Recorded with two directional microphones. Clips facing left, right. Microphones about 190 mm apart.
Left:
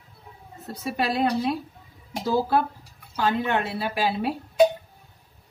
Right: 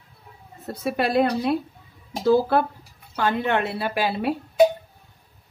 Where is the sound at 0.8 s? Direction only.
55° right (ahead or behind).